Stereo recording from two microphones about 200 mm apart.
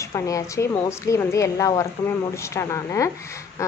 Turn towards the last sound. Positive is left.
turn(degrees=15)  # may be behind; listen again after turning